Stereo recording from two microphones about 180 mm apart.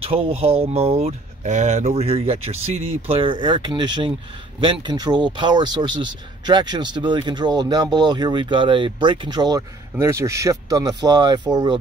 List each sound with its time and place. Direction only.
0.0 s speech: 35° right (ahead or behind)